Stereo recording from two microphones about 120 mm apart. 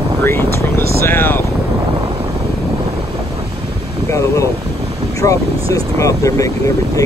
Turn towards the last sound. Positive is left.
turn(degrees=25)  # may be behind; listen again after turning